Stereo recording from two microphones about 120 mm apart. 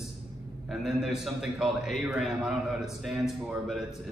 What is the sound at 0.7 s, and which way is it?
A man's voice, 5° right (ahead or behind).